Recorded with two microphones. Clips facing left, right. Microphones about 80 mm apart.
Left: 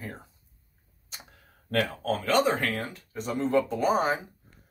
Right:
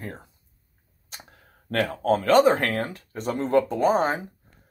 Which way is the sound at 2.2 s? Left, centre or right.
Right.